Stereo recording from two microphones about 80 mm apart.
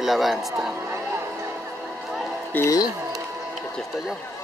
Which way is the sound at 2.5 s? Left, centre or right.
Left.